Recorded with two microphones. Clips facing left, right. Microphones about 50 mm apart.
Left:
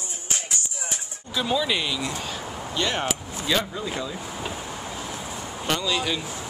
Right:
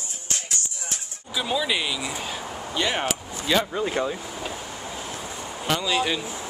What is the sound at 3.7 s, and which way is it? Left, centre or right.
Speech, right.